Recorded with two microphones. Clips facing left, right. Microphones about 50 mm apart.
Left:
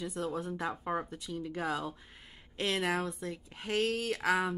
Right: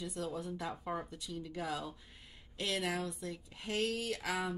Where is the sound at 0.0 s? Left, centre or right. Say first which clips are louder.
Left 4 dB; left.